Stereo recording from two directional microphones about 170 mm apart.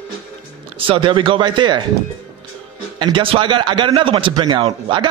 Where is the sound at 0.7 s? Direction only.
30° right (ahead or behind).